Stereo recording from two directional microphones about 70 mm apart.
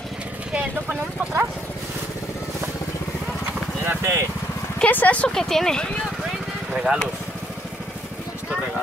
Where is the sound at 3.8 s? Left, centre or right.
Right.